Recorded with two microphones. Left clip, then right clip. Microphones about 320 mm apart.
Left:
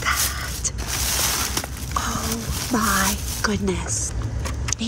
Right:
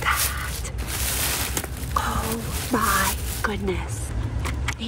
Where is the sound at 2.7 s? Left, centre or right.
Centre.